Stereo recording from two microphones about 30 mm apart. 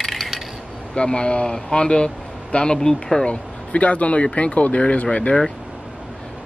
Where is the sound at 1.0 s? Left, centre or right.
Left.